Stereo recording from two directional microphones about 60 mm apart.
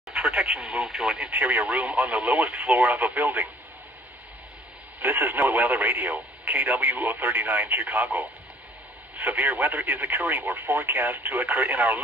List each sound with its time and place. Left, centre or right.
0.1 s speech: centre
1.3 s speech: right
1.7 s speech: centre
3.0 s speech: right
5.0 s speech: right
9.1 s speech: right